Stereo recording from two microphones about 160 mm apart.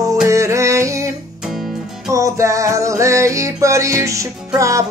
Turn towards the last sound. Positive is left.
turn(degrees=-20)  # may be behind; listen again after turning